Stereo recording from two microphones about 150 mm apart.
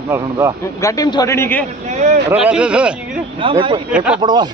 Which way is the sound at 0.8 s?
25° left (ahead or behind).